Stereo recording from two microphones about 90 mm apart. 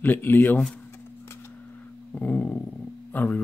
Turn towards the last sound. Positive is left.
turn(degrees=20)  # may be behind; listen again after turning